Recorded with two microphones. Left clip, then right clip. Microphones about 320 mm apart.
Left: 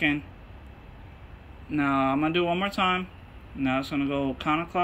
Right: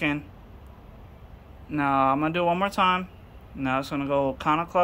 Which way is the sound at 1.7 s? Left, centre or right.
Centre.